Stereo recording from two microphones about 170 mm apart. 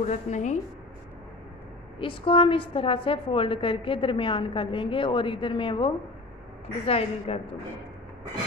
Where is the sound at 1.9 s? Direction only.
30° left (ahead or behind).